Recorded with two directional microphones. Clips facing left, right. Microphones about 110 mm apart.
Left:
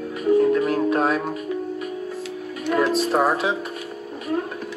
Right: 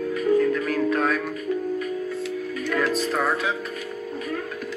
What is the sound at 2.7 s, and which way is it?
Speech, 25° left (ahead or behind).